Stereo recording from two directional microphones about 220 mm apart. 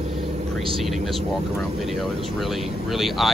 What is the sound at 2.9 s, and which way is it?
Speech, centre (ahead or behind).